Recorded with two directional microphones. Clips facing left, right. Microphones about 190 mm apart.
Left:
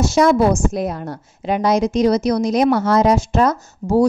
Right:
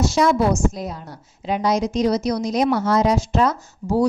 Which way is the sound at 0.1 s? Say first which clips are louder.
Left 4 dB; 50° left (ahead or behind).